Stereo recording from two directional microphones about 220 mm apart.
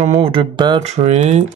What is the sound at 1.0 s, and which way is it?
Speech, 35° right (ahead or behind).